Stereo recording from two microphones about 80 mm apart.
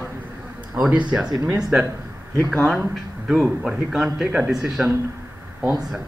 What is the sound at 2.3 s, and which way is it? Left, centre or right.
Speech, centre.